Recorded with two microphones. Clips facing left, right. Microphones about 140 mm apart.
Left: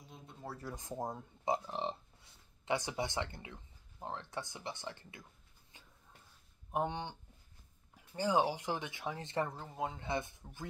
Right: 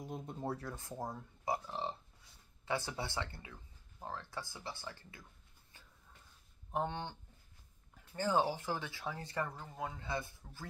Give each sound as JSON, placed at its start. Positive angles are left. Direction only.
{"t": 0.0, "sound": "a sound", "side_deg": -55}
{"t": 0.7, "sound": "speech", "side_deg": 20}
{"t": 6.7, "sound": "speech", "side_deg": 15}